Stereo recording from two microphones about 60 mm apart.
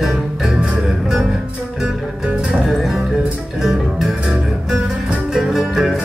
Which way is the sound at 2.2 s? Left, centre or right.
Centre.